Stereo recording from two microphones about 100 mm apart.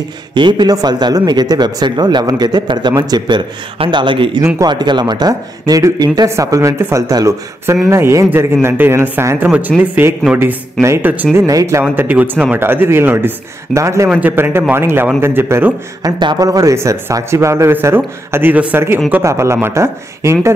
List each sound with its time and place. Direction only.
0.3 s speech: 50° right (ahead or behind)
3.7 s a man's voice: 60° right (ahead or behind); by 11.2 s 20° right (ahead or behind)
11.3 s speech: 35° right (ahead or behind)
11.8 s speech: 20° right (ahead or behind)
16.0 s speech: 50° right (ahead or behind)
16.3 s speech: 35° right (ahead or behind)